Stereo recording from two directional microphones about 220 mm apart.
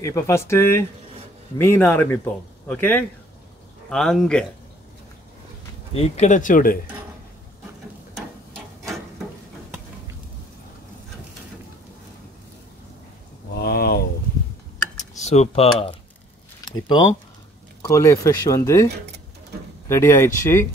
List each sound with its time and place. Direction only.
0.0 s a man's voice: 10° left (ahead or behind)
5.9 s speech: 30° left (ahead or behind)
13.6 s a sound: 45° left (ahead or behind)
15.0 s a man's voice: 30° left (ahead or behind); by 18.9 s 15° left (ahead or behind)
19.9 s a man's voice: 10° left (ahead or behind)